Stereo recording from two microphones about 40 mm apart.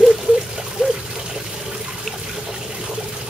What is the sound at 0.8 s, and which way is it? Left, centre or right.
Water, centre.